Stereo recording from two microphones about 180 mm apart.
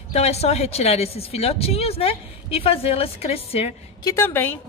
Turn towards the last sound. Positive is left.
turn(degrees=10)  # may be behind; listen again after turning